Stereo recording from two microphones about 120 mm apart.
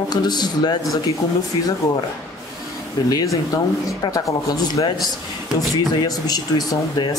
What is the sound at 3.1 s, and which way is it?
Speech, 30° left (ahead or behind).